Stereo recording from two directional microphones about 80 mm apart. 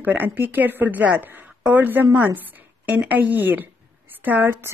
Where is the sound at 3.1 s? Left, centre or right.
Right.